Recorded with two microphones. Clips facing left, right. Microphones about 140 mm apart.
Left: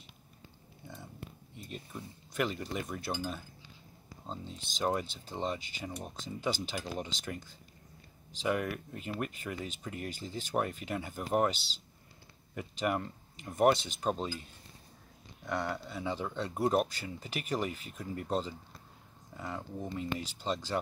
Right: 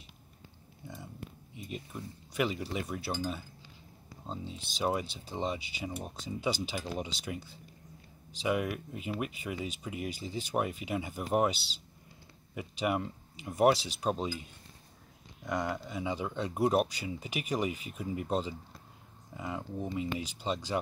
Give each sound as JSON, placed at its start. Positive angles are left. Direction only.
{"t": 1.5, "sound": "speech", "side_deg": -5}